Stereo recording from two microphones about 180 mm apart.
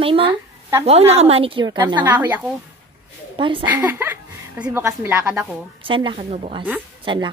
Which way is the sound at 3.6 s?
10° right (ahead or behind).